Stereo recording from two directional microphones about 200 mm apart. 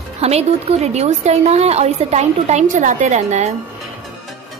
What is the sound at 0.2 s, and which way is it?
A woman's voice, 30° right (ahead or behind).